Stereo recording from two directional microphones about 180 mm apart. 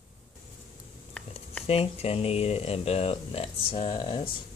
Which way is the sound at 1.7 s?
35° left (ahead or behind).